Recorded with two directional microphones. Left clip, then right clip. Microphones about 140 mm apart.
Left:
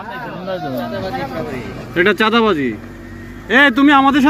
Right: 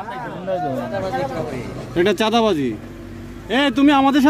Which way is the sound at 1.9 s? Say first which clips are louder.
Left 4 dB; 20° right (ahead or behind).